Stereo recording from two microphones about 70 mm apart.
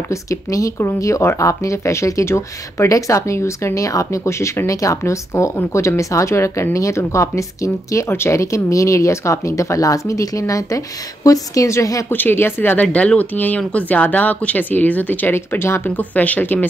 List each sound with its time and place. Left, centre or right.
0.1 s a woman's voice: left
12.1 s speech: left
12.8 s speech: centre